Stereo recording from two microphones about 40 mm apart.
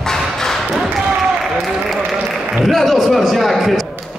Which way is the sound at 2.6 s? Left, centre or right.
Centre.